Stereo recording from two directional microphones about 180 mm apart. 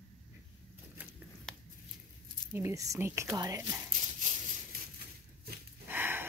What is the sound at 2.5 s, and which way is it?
Speech, 15° right (ahead or behind).